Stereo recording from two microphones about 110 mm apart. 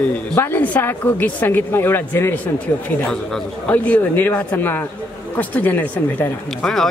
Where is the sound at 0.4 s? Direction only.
15° left (ahead or behind).